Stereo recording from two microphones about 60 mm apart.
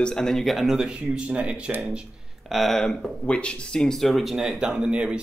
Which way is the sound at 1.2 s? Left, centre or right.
Centre.